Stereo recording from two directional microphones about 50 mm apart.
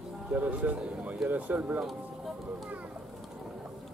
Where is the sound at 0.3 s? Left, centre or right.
Right.